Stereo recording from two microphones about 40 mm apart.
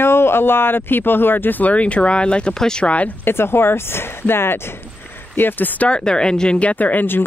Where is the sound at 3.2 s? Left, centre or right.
Left.